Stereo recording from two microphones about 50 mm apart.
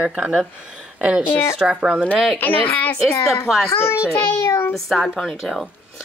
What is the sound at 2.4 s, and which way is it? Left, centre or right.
Speech, left.